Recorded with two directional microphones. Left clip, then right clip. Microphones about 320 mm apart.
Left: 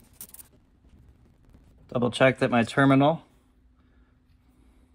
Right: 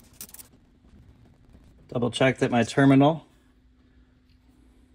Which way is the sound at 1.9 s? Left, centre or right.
Centre.